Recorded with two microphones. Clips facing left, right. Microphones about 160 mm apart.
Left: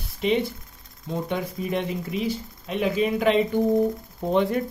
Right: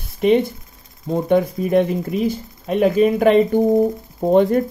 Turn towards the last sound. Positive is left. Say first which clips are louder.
# right 8 dB
turn(degrees=-45)  # may be behind; listen again after turning